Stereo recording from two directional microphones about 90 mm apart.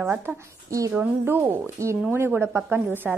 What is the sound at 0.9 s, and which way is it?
A woman's voice, 25° right (ahead or behind).